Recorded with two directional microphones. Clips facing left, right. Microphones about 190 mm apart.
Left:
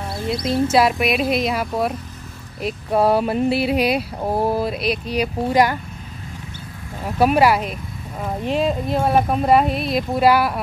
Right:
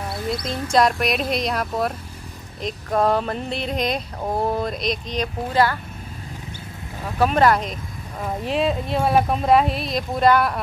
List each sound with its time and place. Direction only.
0.1 s speech: 5° left (ahead or behind)
7.2 s speech: 10° left (ahead or behind)